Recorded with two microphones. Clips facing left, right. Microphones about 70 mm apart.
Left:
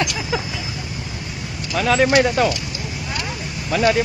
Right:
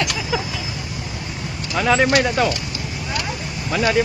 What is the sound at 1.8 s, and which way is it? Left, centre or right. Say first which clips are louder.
Speech: left 1 dB; centre.